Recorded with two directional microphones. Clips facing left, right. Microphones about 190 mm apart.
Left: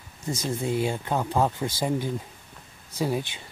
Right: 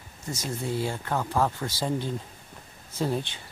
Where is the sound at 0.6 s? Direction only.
20° left (ahead or behind).